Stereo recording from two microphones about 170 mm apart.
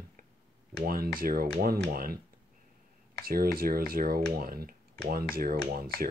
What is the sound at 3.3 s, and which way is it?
Speech, 60° right (ahead or behind).